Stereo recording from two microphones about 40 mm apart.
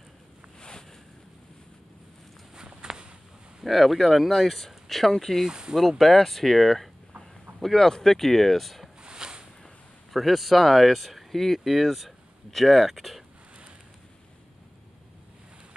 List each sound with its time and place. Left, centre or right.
0.6 s boat: centre
2.5 s walk: centre
3.6 s speech: centre
5.5 s speech: centre
5.8 s speech: centre
9.0 s a sound: right
10.1 s speech: centre